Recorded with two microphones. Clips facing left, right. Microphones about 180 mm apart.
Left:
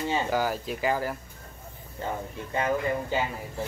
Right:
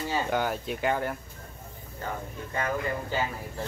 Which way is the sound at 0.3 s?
Centre (ahead or behind).